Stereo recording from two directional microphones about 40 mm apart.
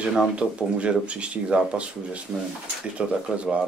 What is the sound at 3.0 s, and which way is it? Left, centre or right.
Speech, right.